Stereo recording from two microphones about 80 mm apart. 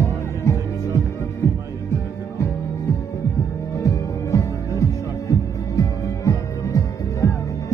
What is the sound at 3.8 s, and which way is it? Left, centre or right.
Music, left.